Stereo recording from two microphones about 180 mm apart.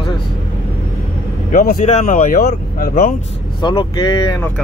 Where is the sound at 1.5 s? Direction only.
50° left (ahead or behind).